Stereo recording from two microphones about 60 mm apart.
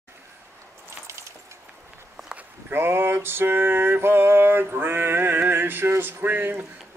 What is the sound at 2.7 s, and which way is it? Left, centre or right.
Mantra, right.